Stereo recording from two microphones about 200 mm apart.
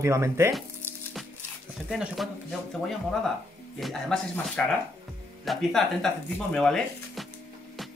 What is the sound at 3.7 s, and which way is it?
Speech, centre (ahead or behind).